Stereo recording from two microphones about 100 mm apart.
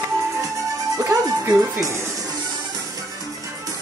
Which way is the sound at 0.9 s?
30° right (ahead or behind).